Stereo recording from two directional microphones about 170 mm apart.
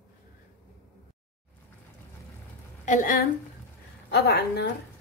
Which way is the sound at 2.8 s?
50° left (ahead or behind).